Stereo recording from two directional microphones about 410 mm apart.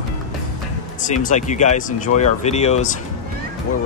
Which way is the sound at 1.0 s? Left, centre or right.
Centre.